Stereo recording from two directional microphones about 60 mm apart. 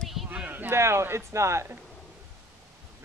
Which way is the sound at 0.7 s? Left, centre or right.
Right.